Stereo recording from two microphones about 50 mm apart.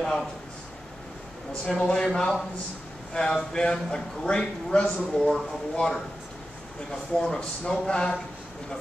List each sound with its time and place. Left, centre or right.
0.0 s a man's voice: centre
1.6 s a man's voice: centre